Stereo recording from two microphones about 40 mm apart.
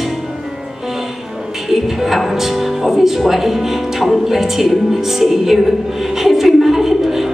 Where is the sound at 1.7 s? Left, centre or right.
Centre.